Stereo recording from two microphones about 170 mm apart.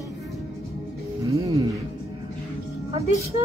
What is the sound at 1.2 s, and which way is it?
Speech, 20° right (ahead or behind).